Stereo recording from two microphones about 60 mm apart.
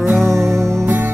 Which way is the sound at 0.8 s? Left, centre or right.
Right.